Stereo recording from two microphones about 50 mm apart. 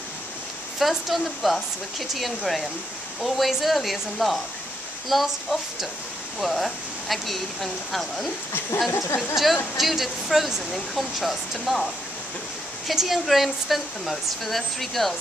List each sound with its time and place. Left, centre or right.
0.7 s speech: centre
9.3 s speech: centre